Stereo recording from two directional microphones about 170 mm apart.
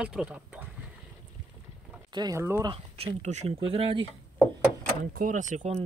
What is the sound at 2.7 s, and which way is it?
Speech, 30° right (ahead or behind).